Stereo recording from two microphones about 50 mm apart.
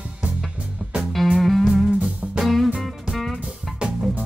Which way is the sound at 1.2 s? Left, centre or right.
Centre.